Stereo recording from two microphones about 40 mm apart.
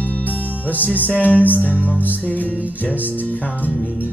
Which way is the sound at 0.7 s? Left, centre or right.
Left.